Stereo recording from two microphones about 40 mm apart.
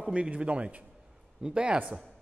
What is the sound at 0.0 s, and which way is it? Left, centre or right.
A man's voice, right.